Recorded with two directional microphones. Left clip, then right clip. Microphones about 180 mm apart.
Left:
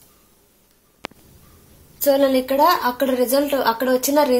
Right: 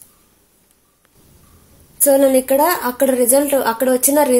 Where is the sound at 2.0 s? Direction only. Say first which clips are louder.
Right 4 dB; 50° right (ahead or behind).